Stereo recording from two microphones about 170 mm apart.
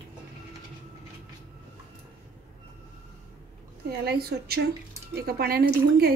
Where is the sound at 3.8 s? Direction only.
65° right (ahead or behind).